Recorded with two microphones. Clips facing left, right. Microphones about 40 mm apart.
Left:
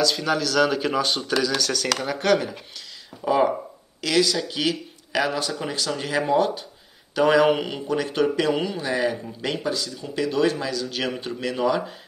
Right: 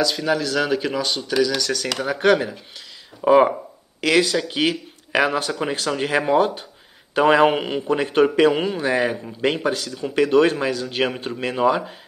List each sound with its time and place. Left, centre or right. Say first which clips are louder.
0.0 s speech: right 2 dB; centre
3.2 s speech: right 6 dB; right